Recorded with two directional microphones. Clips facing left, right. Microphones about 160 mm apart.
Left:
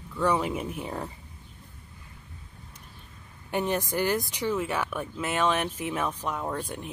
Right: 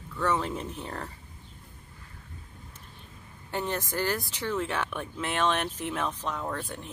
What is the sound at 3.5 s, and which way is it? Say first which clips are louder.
Speech: left 4 dB; 15° left (ahead or behind).